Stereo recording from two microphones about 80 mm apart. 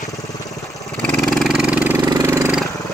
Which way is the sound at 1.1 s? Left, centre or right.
Centre.